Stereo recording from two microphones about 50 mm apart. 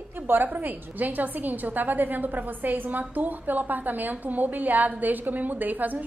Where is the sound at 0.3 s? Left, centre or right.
Right.